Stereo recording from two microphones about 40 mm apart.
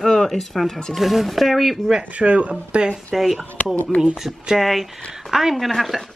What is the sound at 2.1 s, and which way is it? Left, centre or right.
Speech, right.